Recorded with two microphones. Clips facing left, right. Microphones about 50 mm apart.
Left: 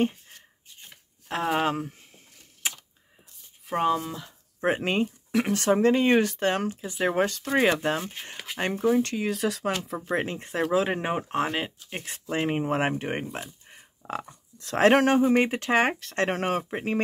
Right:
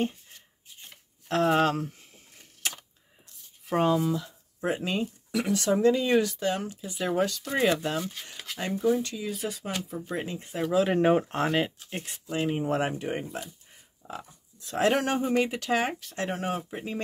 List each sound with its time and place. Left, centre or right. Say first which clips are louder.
1.3 s speech: right 2 dB; centre
2.6 s computer keyboard: left 1 dB; centre
3.6 s speech: right 1 dB; centre
4.6 s speech: left 4 dB; left
6.7 s speech: left 3 dB; left
8.5 s speech: left 2 dB; left
10.0 s speech: left 5 dB; left
10.9 s speech: right 5 dB; centre
11.9 s speech: left 2 dB; left
12.6 s speech: left 2 dB; left
14.8 s speech: left 6 dB; left
15.8 s speech: left 5 dB; left